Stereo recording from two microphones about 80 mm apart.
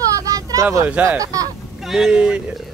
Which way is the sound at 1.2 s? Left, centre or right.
Right.